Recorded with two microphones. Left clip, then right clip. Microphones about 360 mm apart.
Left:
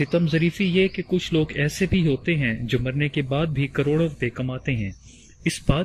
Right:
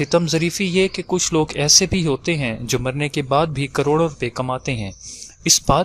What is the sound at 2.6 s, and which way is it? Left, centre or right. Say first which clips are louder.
Speech: right 4 dB; right.